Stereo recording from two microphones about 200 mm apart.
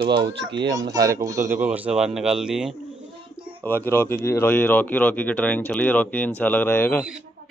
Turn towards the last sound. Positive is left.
turn(degrees=10)  # may be behind; listen again after turning